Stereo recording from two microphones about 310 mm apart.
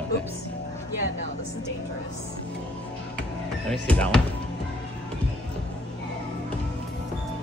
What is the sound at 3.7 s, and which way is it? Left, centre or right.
Speech, centre.